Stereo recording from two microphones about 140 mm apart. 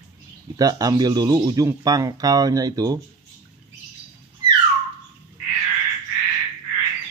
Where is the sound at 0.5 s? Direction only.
25° right (ahead or behind).